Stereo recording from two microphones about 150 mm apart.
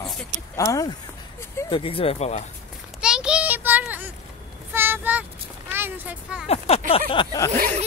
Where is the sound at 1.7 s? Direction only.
35° left (ahead or behind).